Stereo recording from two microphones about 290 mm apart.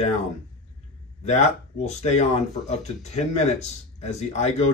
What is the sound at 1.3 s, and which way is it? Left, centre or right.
Speech, left.